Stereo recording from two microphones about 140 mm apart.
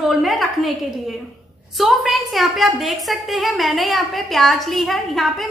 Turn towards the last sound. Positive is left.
turn(degrees=0)  # may be behind; listen again after turning